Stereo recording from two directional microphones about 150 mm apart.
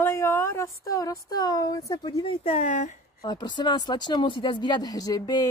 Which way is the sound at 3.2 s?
30° left (ahead or behind).